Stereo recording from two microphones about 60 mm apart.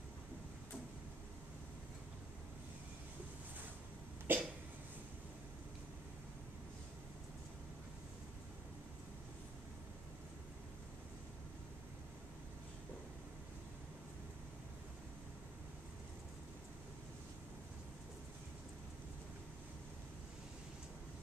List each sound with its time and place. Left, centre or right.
4.3 s cough: right